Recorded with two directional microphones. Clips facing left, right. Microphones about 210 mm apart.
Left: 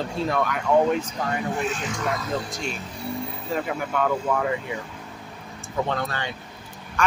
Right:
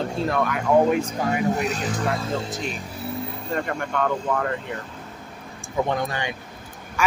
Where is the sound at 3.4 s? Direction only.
5° left (ahead or behind).